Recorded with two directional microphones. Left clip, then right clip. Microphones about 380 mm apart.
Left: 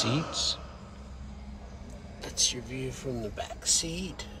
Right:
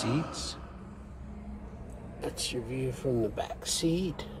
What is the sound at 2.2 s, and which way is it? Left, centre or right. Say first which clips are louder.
Speech: left 5 dB; centre.